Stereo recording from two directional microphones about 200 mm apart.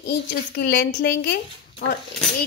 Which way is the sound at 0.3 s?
55° left (ahead or behind).